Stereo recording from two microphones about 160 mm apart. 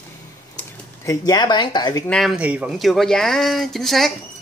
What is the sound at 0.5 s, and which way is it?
Speech, 20° left (ahead or behind).